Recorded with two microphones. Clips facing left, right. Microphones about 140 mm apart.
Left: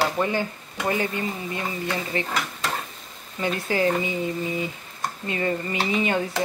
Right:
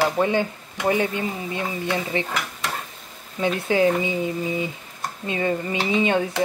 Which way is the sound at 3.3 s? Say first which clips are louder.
Right 4 dB; 15° right (ahead or behind).